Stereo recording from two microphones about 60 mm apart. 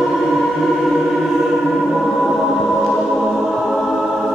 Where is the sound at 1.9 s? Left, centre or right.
Centre.